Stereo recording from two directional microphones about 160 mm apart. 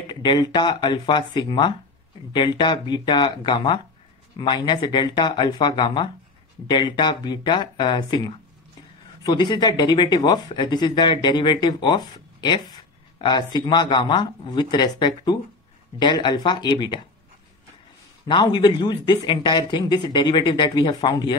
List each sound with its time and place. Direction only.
0.1 s speech: 30° left (ahead or behind)
18.2 s speech: 30° left (ahead or behind)